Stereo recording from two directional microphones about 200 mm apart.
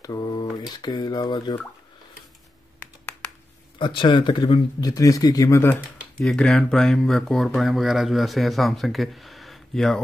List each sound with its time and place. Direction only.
0.0 s speech: 20° left (ahead or behind)
3.2 s a sound: 5° left (ahead or behind)
3.7 s speech: 25° left (ahead or behind); by 9.9 s centre (ahead or behind)